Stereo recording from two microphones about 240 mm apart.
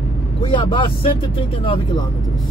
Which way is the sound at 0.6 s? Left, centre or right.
Centre.